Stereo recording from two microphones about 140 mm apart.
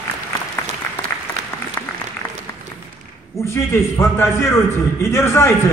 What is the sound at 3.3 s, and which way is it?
A woman's voice, 20° left (ahead or behind).